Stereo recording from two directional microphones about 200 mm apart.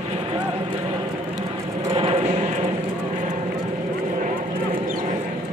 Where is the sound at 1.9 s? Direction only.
25° right (ahead or behind).